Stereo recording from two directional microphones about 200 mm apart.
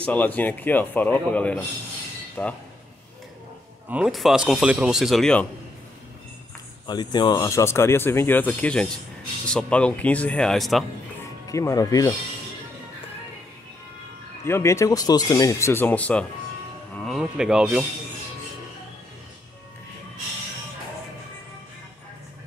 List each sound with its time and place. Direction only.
0.0 s speech: 10° left (ahead or behind)
3.9 s speech: centre (ahead or behind)
6.9 s speech: 20° left (ahead or behind); by 10.9 s centre (ahead or behind)
11.4 s speech: 15° left (ahead or behind)
14.4 s speech: 15° left (ahead or behind); by 17.8 s 5° right (ahead or behind)